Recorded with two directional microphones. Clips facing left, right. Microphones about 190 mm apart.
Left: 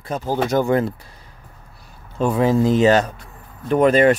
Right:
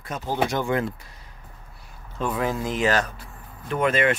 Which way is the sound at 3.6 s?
40° left (ahead or behind).